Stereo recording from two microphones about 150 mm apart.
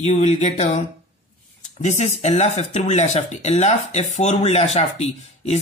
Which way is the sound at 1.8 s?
50° left (ahead or behind).